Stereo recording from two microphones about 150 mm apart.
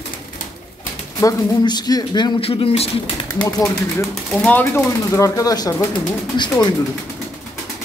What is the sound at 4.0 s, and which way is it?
Speech, 15° left (ahead or behind).